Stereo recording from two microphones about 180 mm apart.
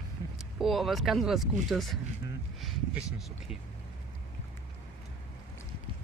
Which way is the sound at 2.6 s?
5° right (ahead or behind).